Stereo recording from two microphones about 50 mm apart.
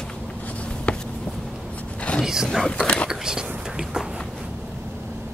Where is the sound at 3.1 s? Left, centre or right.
Centre.